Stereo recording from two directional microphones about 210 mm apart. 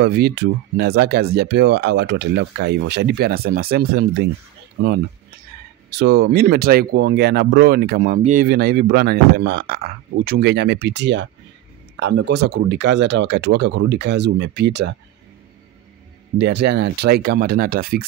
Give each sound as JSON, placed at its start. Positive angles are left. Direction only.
{"t": 0.0, "sound": "speech", "side_deg": -55}
{"t": 5.9, "sound": "speech", "side_deg": -50}
{"t": 16.3, "sound": "speech", "side_deg": -55}